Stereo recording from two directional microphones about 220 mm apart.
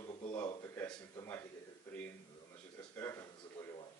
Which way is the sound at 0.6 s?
10° left (ahead or behind).